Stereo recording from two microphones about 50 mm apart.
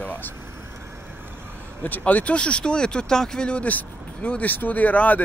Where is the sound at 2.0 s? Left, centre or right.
Left.